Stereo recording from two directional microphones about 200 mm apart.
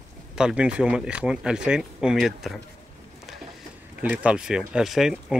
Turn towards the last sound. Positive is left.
turn(degrees=0)  # may be behind; listen again after turning